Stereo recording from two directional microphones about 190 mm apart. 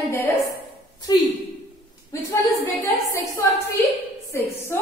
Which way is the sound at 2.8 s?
15° left (ahead or behind).